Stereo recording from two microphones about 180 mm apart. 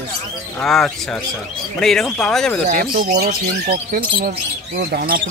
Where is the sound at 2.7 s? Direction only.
45° right (ahead or behind).